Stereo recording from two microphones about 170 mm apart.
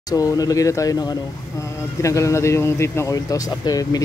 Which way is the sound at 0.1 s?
20° left (ahead or behind).